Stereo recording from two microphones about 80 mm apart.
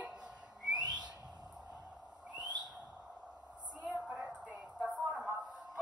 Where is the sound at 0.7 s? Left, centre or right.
Right.